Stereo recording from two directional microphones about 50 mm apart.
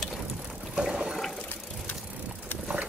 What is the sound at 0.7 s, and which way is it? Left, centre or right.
Water, centre.